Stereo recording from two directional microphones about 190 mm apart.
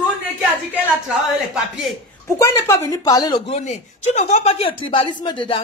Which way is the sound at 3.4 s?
35° left (ahead or behind).